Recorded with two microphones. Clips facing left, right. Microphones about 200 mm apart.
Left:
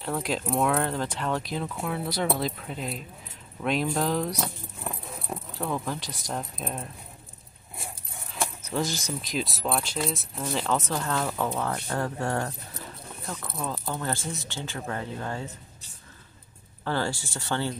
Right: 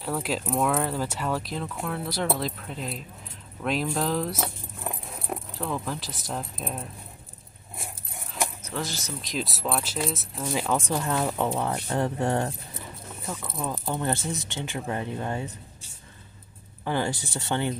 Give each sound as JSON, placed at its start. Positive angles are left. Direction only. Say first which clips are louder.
{"t": 0.0, "sound": "speech", "louder": "even", "side_deg": -5}
{"t": 5.6, "sound": "speech", "louder": "left 2 dB", "side_deg": 0}
{"t": 8.7, "sound": "speech", "louder": "left 5 dB", "side_deg": 15}
{"t": 9.2, "sound": "speech", "louder": "right 2 dB", "side_deg": 0}
{"t": 13.3, "sound": "speech", "louder": "right 1 dB", "side_deg": -5}
{"t": 13.7, "sound": "speech", "louder": "right 3 dB", "side_deg": -15}
{"t": 16.8, "sound": "speech", "louder": "right 1 dB", "side_deg": -15}